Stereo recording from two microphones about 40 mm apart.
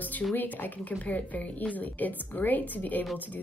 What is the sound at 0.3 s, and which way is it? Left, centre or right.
Speech, left.